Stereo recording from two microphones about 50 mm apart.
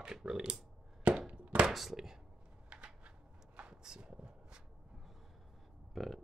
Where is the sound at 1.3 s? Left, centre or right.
Right.